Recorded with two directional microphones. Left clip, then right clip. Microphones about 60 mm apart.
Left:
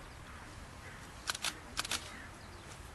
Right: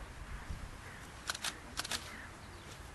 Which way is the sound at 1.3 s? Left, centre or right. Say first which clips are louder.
Left 2 dB; left.